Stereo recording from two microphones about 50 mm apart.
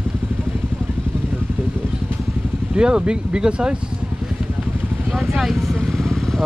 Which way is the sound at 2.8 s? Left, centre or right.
Centre.